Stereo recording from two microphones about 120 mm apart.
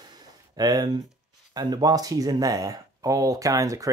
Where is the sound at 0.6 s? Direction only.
35° right (ahead or behind).